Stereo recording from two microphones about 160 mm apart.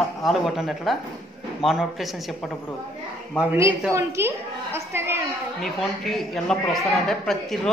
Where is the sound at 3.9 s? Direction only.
15° right (ahead or behind).